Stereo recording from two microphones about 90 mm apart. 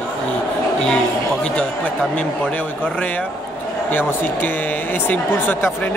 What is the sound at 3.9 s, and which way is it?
Speech, 20° left (ahead or behind).